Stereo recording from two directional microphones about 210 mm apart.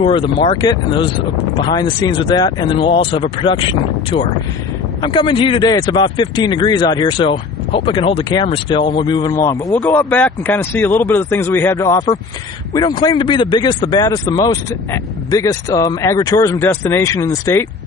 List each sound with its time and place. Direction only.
0.0 s speech: 25° left (ahead or behind)